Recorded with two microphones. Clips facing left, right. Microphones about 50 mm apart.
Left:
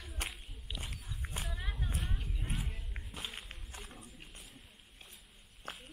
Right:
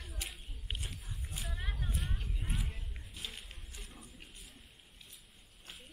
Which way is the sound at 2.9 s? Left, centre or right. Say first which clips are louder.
Left 3 dB; left.